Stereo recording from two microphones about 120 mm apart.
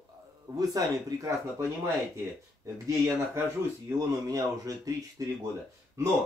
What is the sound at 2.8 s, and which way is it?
Speech, 25° right (ahead or behind).